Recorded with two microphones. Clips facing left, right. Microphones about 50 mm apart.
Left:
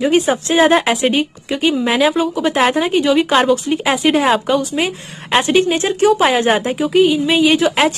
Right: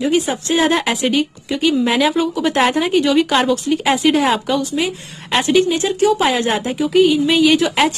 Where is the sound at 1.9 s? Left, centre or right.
Centre.